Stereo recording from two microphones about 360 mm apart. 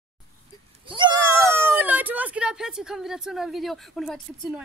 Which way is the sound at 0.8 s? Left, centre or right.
Centre.